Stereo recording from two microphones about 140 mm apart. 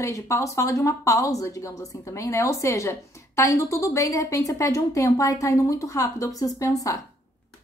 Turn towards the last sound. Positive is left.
turn(degrees=25)  # may be behind; listen again after turning